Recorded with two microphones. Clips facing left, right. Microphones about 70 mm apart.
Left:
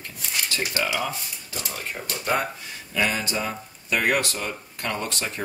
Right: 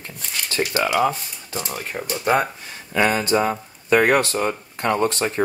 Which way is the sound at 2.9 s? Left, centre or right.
Right.